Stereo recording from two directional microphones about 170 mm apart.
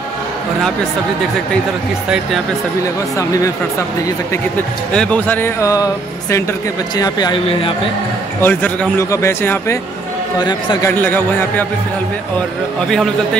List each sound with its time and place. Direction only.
4.9 s a man's voice: 5° left (ahead or behind)
7.0 s speech: 25° left (ahead or behind)
8.4 s a man's voice: 10° left (ahead or behind)
10.4 s speech: 25° left (ahead or behind)
10.9 s a man's voice: 10° left (ahead or behind)
12.8 s a man's voice: 5° left (ahead or behind)